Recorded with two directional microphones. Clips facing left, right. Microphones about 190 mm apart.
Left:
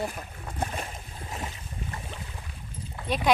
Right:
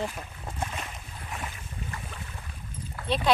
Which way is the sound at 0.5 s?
35° left (ahead or behind).